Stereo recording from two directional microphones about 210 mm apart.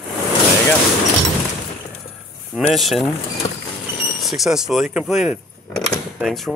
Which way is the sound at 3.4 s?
20° left (ahead or behind).